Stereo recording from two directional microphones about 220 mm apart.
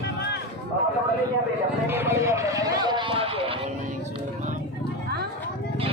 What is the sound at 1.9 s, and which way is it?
Speech, 10° right (ahead or behind).